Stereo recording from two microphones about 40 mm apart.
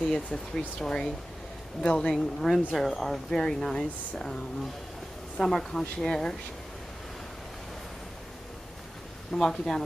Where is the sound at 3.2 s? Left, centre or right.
Centre.